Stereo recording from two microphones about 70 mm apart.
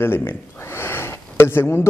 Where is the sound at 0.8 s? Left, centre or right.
Left.